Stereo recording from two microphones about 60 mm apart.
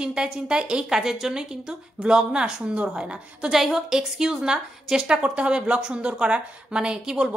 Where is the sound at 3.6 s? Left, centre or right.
Centre.